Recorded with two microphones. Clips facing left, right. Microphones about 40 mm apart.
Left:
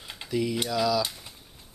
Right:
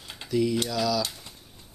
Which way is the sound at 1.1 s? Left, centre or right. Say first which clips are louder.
Even; centre.